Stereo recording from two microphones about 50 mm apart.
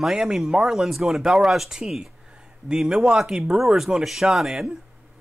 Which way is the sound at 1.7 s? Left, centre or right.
Centre.